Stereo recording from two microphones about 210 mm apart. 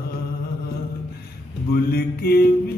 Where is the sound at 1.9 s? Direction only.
45° left (ahead or behind).